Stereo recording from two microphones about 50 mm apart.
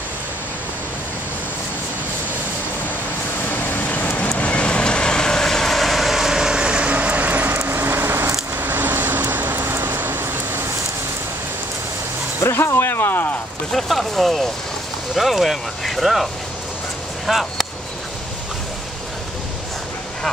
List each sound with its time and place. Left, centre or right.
3.4 s vehicle: left
4.4 s vehicle: left; by 7.5 s right
7.5 s a sound: right
8.5 s vehicle: right
12.4 s a sound: left
13.7 s speech: centre
17.3 s speech: centre